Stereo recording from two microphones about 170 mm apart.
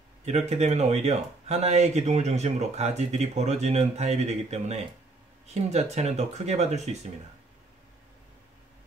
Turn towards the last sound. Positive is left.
turn(degrees=-40)  # may be behind; listen again after turning